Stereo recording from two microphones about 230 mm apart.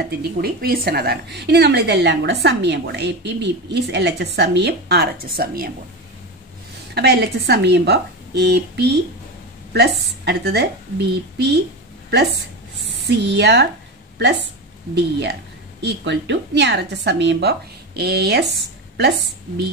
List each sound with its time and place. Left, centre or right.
0.0 s a woman's voice: right
7.0 s a woman's voice: right
10.2 s a woman's voice: right